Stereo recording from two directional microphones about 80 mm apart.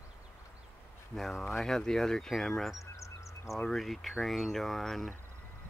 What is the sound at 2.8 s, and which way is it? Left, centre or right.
Duck, left.